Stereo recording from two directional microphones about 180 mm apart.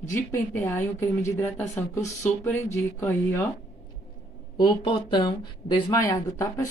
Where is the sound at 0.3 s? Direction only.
15° left (ahead or behind).